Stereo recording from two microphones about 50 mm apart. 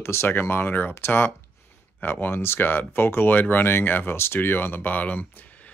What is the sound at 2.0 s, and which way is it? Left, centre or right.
Speech, left.